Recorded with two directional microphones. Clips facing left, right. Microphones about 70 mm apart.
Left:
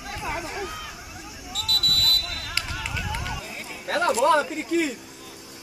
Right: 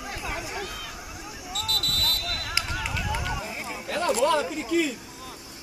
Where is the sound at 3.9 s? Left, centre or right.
Left.